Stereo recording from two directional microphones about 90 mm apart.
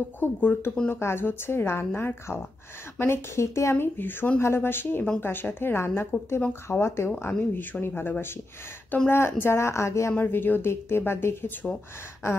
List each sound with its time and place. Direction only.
0.2 s a woman's voice: 20° left (ahead or behind)
10.1 s a woman's voice: 20° left (ahead or behind)